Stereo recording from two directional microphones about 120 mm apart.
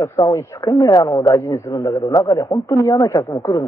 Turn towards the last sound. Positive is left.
turn(degrees=25)  # may be behind; listen again after turning